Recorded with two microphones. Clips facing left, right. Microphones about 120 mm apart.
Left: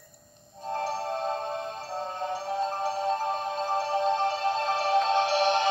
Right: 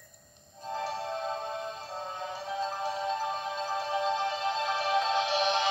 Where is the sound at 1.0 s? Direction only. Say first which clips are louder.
Left 4 dB; 50° left (ahead or behind).